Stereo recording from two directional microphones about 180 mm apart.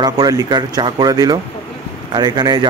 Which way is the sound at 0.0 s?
20° right (ahead or behind).